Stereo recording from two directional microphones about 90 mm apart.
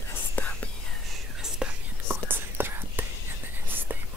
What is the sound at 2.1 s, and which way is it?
Whispering, 25° right (ahead or behind).